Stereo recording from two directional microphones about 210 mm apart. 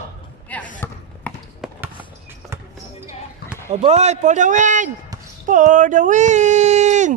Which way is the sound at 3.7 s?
30° right (ahead or behind).